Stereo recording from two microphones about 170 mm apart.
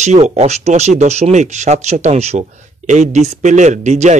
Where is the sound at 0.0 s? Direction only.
40° right (ahead or behind).